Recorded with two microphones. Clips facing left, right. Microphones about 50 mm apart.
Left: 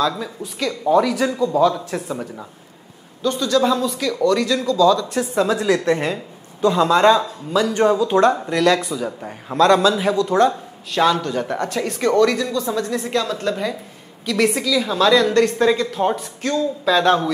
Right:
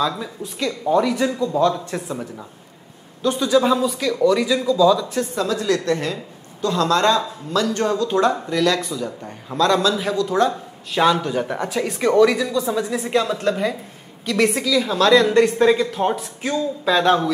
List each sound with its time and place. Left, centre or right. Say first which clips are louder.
0.0 s speech: left 1 dB; centre
3.2 s speech: right 1 dB; centre
5.3 s a woman's voice: left 4 dB; left; by 11.0 s centre
11.0 s speech: even; centre
15.2 s speech: right 1 dB; centre